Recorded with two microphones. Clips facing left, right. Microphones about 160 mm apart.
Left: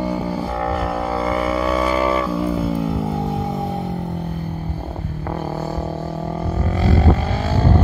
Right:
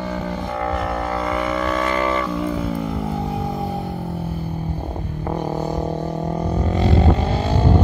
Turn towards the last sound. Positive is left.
turn(degrees=-15)  # may be behind; listen again after turning